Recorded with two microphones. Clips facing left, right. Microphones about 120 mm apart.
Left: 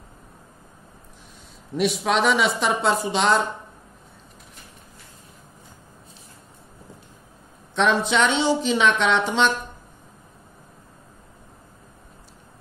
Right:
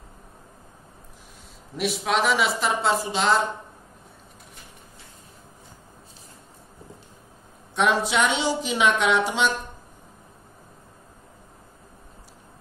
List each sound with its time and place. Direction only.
1.8 s speech: centre (ahead or behind)
7.7 s a woman's voice: 10° right (ahead or behind)